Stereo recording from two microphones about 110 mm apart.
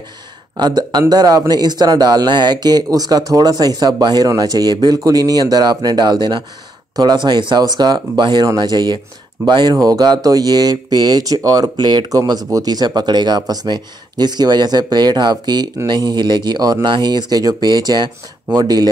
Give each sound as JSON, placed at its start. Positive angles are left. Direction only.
{"t": 0.6, "sound": "speech", "side_deg": -40}
{"t": 12.2, "sound": "speech", "side_deg": -30}